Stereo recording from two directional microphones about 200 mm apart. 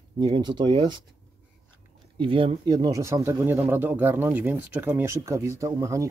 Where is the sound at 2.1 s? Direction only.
25° right (ahead or behind).